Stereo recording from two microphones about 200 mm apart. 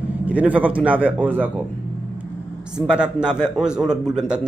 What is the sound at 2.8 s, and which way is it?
A man's voice, 5° right (ahead or behind).